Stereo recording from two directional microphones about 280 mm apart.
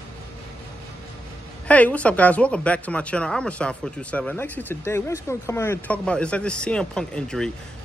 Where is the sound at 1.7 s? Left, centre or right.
Centre.